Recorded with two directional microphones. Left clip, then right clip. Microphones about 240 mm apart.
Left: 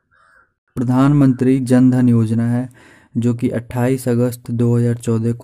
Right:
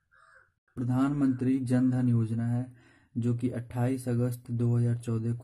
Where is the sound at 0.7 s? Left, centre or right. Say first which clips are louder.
Left 14 dB; left.